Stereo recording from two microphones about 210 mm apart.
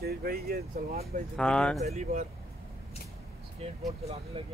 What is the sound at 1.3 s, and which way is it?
Speech, 5° left (ahead or behind).